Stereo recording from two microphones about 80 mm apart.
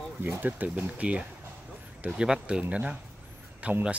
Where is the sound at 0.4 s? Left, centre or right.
Right.